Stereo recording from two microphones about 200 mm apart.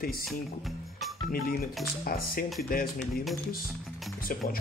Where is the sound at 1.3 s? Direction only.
50° left (ahead or behind).